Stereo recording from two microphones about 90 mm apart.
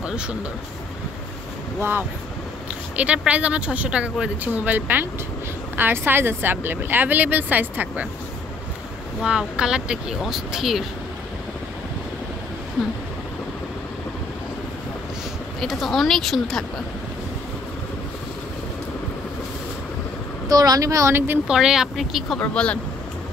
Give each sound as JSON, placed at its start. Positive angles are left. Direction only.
{"t": 0.0, "sound": "a sound", "side_deg": -10}
{"t": 1.8, "sound": "a woman's voice", "side_deg": -20}
{"t": 9.2, "sound": "speech", "side_deg": -10}
{"t": 15.6, "sound": "a woman's voice", "side_deg": 0}
{"t": 20.4, "sound": "speech", "side_deg": -45}
{"t": 21.5, "sound": "a woman's voice", "side_deg": -5}
{"t": 22.4, "sound": "speech", "side_deg": 10}